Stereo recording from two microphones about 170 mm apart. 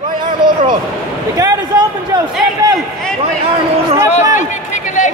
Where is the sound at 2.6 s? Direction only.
25° right (ahead or behind).